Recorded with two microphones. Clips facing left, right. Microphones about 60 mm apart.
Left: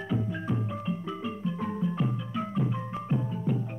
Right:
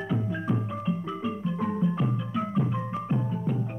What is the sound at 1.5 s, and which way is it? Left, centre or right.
Music, right.